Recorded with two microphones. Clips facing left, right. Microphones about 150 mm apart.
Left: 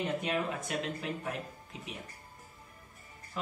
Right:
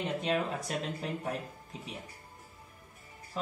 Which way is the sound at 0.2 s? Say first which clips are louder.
Right 2 dB; 30° right (ahead or behind).